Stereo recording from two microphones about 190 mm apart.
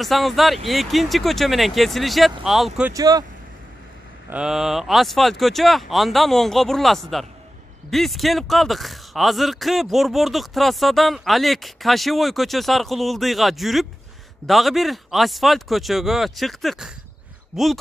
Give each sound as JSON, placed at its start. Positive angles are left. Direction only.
{"t": 0.0, "sound": "speech", "side_deg": 0}
{"t": 2.9, "sound": "speech", "side_deg": -20}
{"t": 4.3, "sound": "speech", "side_deg": -5}